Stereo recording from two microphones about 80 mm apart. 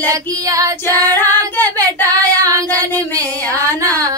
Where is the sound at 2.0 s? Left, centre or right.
Right.